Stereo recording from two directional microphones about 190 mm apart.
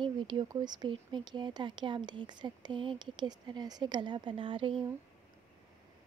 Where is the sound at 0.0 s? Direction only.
25° right (ahead or behind).